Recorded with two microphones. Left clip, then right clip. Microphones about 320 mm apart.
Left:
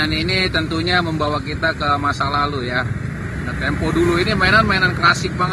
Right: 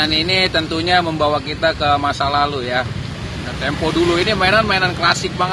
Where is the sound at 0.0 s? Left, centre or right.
Centre.